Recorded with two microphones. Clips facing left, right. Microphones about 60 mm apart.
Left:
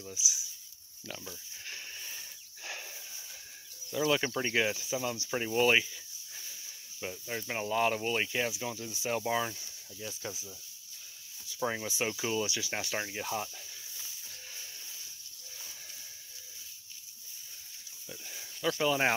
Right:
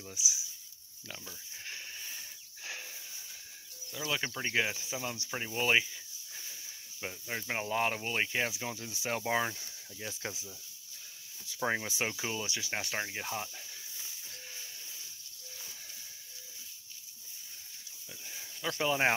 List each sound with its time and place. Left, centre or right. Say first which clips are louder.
1.7 s a sound: left 1 dB; centre
4.1 s speech: left 2 dB; centre
7.0 s speech: left 1 dB; right
9.9 s speech: even; right
11.6 s speech: right 1 dB; right
12.0 s speech: left 2 dB; right
12.4 s speech: left 3 dB; right
12.9 s speech: left 4 dB; centre
18.6 s speech: left 2 dB; centre